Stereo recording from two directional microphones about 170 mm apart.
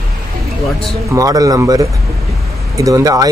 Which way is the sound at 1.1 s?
20° right (ahead or behind).